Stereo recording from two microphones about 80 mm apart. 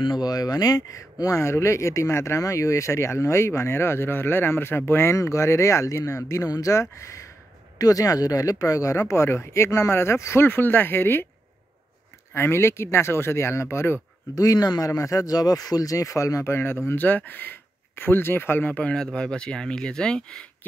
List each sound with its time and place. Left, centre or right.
0.0 s speech: left
12.4 s speech: left
14.3 s speech: left; by 20.4 s centre